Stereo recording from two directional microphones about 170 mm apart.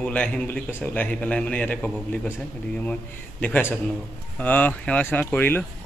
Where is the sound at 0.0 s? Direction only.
5° left (ahead or behind).